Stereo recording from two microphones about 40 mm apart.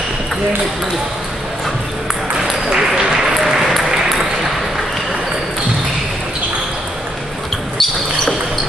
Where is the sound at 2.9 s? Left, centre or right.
Centre.